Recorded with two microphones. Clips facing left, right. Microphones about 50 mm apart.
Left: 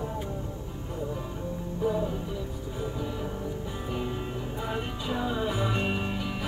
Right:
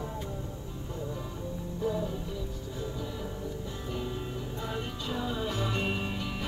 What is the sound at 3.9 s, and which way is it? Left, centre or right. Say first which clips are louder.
Music: left 3 dB; left.